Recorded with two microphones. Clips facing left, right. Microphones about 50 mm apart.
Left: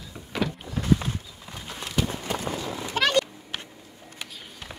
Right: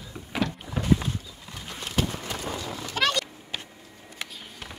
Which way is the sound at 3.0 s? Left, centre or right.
Left.